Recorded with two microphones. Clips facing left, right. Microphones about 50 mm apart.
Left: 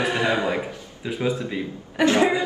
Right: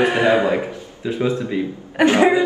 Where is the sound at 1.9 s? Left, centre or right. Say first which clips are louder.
Right 5 dB; right.